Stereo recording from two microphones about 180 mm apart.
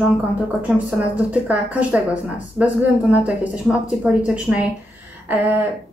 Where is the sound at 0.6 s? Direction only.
5° right (ahead or behind).